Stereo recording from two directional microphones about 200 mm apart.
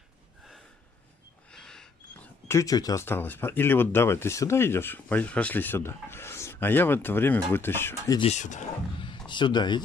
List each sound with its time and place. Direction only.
1.5 s speech: 5° left (ahead or behind)
8.2 s speech: 35° left (ahead or behind)
9.3 s speech: 20° left (ahead or behind)